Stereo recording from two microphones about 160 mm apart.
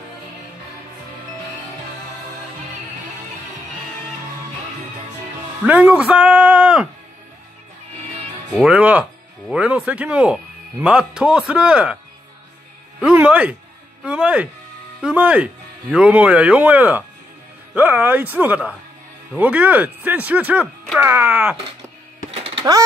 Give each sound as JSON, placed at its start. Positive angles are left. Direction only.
{"t": 5.7, "sound": "speech", "side_deg": -10}
{"t": 8.6, "sound": "speech", "side_deg": -10}
{"t": 13.0, "sound": "speech", "side_deg": -10}
{"t": 22.3, "sound": "music", "side_deg": -35}